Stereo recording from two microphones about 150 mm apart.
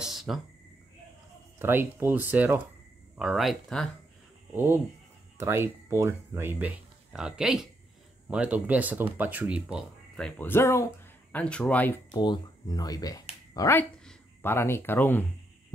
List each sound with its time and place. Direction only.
0.0 s a sound: centre (ahead or behind)
1.6 s speech: 15° right (ahead or behind); by 3.9 s 5° left (ahead or behind)
4.6 s speech: 15° right (ahead or behind)
7.1 s speech: 5° right (ahead or behind)
10.2 s speech: 15° left (ahead or behind)
12.1 s speech: 30° left (ahead or behind); by 15.2 s 15° left (ahead or behind)